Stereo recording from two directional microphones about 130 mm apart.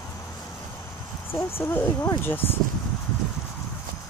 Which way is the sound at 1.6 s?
20° left (ahead or behind).